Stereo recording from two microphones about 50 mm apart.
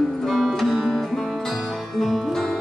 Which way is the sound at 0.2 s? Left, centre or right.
Centre.